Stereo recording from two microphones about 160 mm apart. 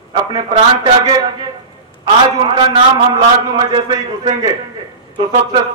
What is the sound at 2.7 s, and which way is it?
A man's voice, 25° right (ahead or behind).